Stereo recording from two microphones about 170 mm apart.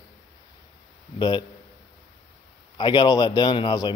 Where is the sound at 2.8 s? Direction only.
25° left (ahead or behind).